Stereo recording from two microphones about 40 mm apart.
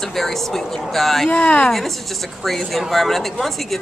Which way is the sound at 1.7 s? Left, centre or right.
Centre.